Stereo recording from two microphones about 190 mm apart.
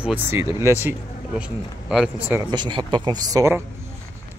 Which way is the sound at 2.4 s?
25° right (ahead or behind).